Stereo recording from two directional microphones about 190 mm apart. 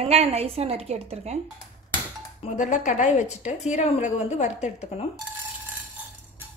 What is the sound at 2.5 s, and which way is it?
A woman's voice, 40° left (ahead or behind).